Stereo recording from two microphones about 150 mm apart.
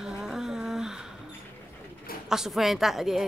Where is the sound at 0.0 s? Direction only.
5° right (ahead or behind).